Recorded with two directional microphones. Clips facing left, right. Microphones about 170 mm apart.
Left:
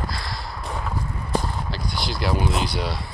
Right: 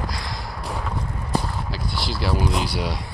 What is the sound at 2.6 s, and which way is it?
Speech, 10° right (ahead or behind).